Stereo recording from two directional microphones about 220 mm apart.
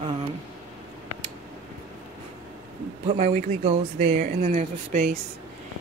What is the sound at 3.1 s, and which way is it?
Speech, 30° right (ahead or behind).